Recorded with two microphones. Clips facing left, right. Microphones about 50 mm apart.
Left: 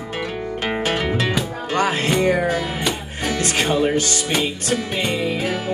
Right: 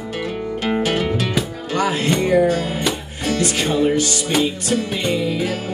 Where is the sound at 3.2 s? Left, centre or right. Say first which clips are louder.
Right 1 dB; left.